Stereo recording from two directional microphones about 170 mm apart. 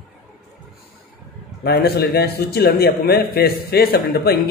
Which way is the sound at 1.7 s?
70° left (ahead or behind).